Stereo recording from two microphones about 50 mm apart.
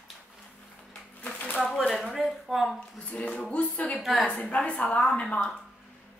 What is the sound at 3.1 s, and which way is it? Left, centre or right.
Speech, left.